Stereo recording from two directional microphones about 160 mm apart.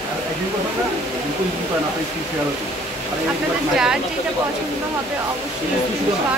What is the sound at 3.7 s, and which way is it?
Speech, 5° right (ahead or behind).